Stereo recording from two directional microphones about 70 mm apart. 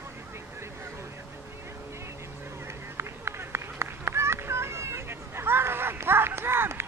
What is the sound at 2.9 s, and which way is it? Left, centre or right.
Run, right.